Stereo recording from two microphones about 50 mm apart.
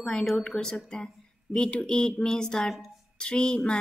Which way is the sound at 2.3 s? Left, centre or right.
Centre.